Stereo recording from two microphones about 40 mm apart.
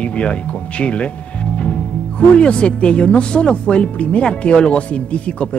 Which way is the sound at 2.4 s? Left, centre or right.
Left.